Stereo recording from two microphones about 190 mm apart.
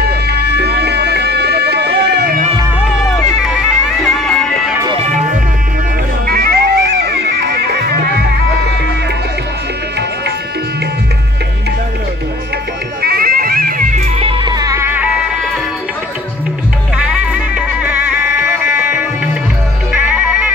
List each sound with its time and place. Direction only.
0.0 s music: 60° right (ahead or behind)
3.4 s bagpipes: centre (ahead or behind)
4.8 s music: 35° right (ahead or behind)
6.2 s music: 55° right (ahead or behind)
13.0 s bagpipes: 50° right (ahead or behind)
14.1 s music: 25° right (ahead or behind); by 15.2 s 5° right (ahead or behind)
17.0 s music: 5° right (ahead or behind)